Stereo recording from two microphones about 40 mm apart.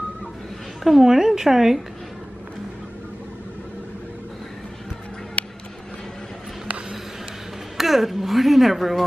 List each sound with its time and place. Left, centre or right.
0.8 s a woman's voice: centre
5.4 s a sound: left
7.7 s speech: centre